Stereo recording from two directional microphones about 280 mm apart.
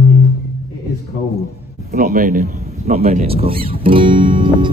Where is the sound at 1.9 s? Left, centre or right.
Right.